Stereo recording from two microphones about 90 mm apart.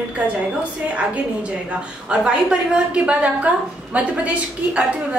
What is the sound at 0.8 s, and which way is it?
A woman's voice, 15° right (ahead or behind).